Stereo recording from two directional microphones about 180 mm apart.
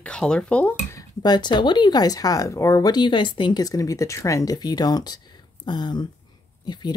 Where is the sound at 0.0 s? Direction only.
5° left (ahead or behind).